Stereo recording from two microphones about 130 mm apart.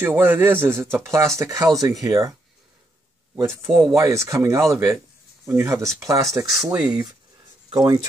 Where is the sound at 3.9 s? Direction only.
25° right (ahead or behind).